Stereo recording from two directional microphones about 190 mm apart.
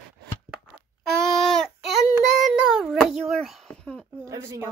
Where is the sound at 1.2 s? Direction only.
Centre (ahead or behind).